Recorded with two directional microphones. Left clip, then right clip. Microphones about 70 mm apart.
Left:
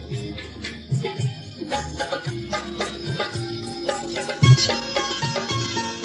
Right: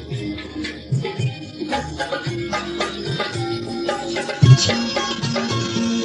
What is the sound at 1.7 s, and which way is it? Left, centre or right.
Music, right.